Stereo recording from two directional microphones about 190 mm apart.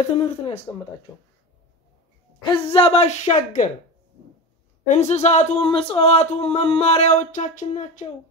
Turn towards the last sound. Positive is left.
turn(degrees=40)  # may be behind; listen again after turning